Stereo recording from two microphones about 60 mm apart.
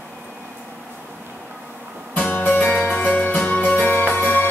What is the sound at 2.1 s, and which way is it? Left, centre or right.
Music, left.